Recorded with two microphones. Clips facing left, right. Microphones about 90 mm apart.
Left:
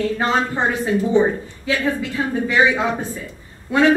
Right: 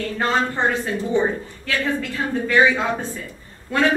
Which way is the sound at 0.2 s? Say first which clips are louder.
Right 3 dB; 15° left (ahead or behind).